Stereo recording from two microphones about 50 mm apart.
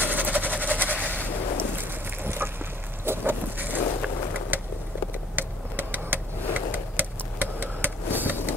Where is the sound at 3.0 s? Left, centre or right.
Right.